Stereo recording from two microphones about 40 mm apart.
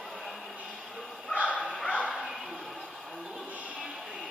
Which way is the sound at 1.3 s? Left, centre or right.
Right.